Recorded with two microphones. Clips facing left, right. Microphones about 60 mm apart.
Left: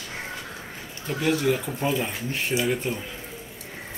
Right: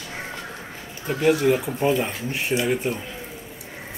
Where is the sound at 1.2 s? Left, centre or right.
Centre.